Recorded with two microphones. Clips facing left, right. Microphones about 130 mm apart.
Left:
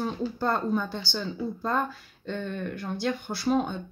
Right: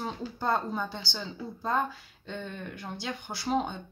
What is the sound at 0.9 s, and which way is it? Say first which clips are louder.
Speech: left 6 dB; 55° left (ahead or behind).